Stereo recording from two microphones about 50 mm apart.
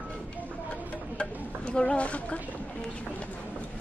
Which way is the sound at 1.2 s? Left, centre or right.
Left.